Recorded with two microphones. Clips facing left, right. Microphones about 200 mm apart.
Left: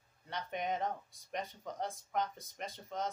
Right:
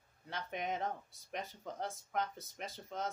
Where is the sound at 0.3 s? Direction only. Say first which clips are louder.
Left 2 dB; centre (ahead or behind).